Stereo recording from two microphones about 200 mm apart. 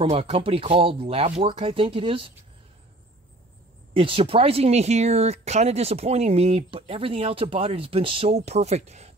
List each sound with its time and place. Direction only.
0.1 s speech: 30° right (ahead or behind)
3.9 s speech: 25° right (ahead or behind)